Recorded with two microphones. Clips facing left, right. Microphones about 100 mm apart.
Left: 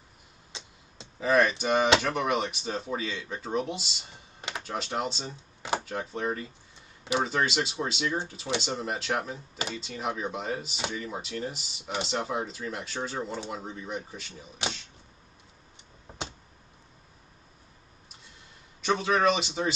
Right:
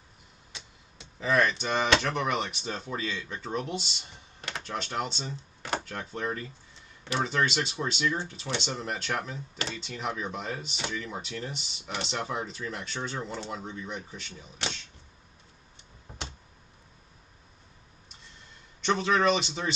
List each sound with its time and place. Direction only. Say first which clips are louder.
0.5 s a sound: left 2 dB; 25° left (ahead or behind)
1.2 s speech: left 2 dB; 5° left (ahead or behind)
4.4 s a sound: left 1 dB; 15° left (ahead or behind)
4.6 s speech: left 1 dB; 5° left (ahead or behind)
8.0 s speech: right 1 dB; 20° left (ahead or behind)
8.5 s speech: left 2 dB; 5° left (ahead or behind)
18.8 s speech: even; 5° left (ahead or behind)